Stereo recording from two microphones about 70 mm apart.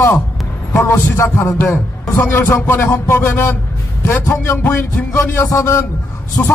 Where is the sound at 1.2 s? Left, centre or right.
Left.